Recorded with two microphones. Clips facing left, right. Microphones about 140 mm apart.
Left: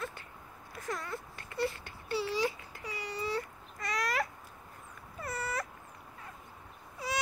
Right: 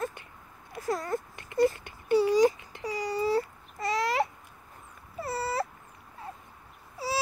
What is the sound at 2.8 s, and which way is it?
Baby cry, 35° right (ahead or behind).